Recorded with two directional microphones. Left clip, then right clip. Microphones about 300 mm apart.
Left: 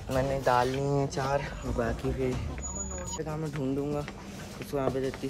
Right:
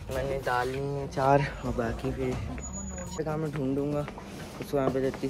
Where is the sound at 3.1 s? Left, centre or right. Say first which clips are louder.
Right 5 dB; centre.